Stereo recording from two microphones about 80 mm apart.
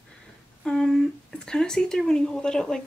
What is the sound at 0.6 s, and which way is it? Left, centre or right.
Speech, centre.